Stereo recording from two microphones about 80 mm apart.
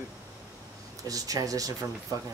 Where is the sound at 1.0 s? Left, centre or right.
Right.